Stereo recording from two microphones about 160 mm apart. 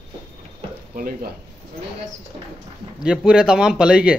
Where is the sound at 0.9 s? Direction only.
60° right (ahead or behind).